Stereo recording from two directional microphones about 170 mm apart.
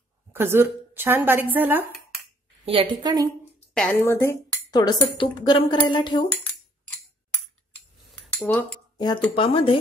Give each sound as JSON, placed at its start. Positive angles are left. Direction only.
{"t": 0.3, "sound": "a woman's voice", "side_deg": -15}
{"t": 2.6, "sound": "a woman's voice", "side_deg": -30}
{"t": 3.7, "sound": "speech", "side_deg": 5}
{"t": 7.2, "sound": "cutlery", "side_deg": 10}
{"t": 8.9, "sound": "speech", "side_deg": 25}